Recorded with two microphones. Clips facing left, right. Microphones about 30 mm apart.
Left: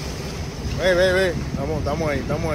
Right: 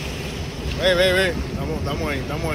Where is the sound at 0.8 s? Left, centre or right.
Right.